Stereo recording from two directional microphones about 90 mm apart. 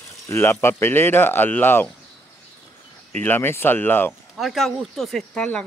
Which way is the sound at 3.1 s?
20° left (ahead or behind).